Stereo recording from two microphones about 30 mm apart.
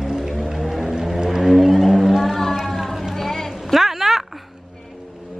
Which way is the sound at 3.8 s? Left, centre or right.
Centre.